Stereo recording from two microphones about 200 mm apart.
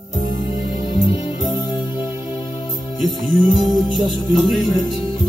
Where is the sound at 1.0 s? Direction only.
25° left (ahead or behind).